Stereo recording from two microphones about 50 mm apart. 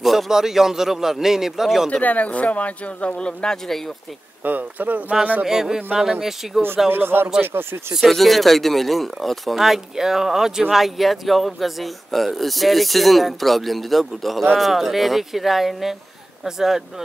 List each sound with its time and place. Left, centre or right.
0.0 s a man's voice: centre
1.9 s speech: left
3.6 s speech: centre
4.5 s speech: right
5.4 s a man's voice: centre
6.9 s a man's voice: right
8.1 s a man's voice: centre